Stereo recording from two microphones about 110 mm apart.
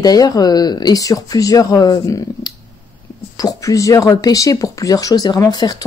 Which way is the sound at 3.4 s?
35° left (ahead or behind).